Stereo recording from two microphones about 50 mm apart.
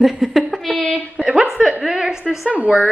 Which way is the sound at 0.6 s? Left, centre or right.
Centre.